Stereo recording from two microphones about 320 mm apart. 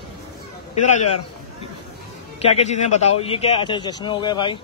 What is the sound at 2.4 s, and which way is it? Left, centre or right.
A man's voice, centre.